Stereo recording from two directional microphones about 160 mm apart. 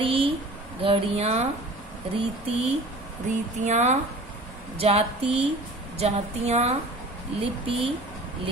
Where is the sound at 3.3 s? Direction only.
45° right (ahead or behind).